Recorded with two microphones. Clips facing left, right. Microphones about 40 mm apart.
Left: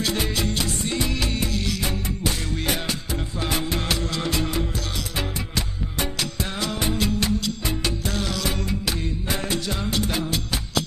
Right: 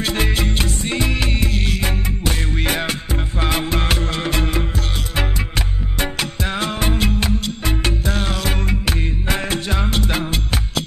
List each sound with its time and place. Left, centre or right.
0.0 s music: right
5.9 s music: right